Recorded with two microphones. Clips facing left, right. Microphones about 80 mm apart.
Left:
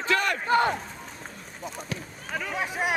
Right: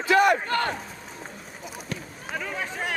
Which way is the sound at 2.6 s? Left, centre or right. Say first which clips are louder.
Left 3 dB; centre.